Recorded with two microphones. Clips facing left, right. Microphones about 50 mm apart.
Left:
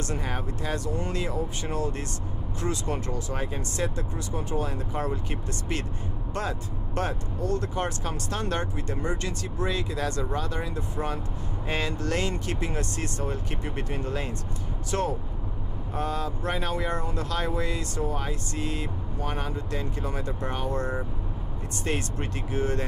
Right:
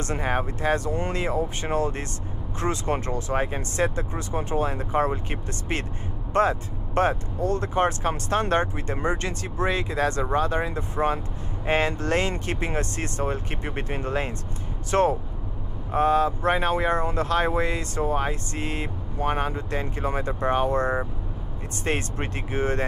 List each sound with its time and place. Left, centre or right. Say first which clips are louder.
0.0 s speech: right 5 dB; right